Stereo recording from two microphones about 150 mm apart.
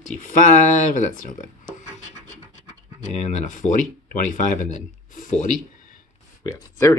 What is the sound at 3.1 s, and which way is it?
Speech, 50° left (ahead or behind).